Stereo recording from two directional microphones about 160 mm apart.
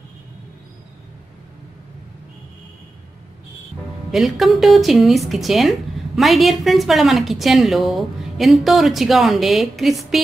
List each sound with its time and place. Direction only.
4.1 s a woman's voice: centre (ahead or behind)